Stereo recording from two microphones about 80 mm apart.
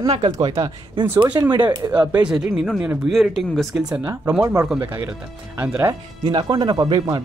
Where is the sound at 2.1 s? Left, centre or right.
Centre.